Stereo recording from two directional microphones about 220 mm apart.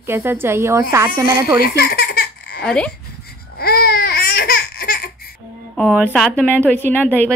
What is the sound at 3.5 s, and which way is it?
Babbling, 45° left (ahead or behind).